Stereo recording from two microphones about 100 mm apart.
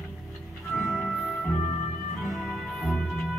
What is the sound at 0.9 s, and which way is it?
Music, 5° left (ahead or behind).